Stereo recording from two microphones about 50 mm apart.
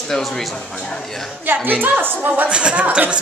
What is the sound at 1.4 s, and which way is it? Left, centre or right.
A woman's voice, right.